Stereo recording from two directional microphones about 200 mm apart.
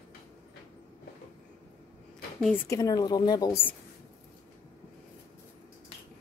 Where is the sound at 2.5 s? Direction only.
15° left (ahead or behind).